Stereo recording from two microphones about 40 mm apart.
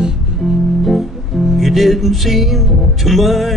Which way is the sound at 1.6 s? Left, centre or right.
Centre.